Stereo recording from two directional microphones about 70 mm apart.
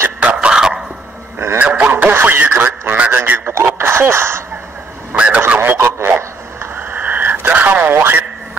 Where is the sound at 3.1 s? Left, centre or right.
Right.